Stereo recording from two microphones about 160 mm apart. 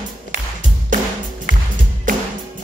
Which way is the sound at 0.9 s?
55° right (ahead or behind).